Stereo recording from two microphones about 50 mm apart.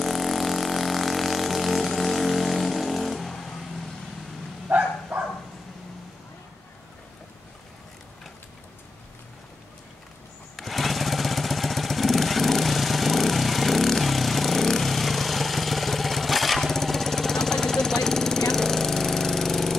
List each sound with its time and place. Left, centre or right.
0.0 s vehicle: centre
4.6 s bow-wow: right
10.5 s a sound: centre